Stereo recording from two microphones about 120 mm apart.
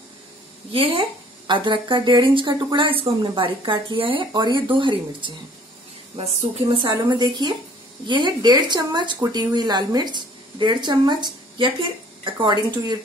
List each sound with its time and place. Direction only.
0.7 s a woman's voice: 50° right (ahead or behind)
6.7 s speech: 40° right (ahead or behind)